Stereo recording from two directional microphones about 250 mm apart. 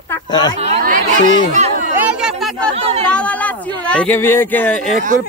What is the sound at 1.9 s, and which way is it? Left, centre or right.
Chatter, centre.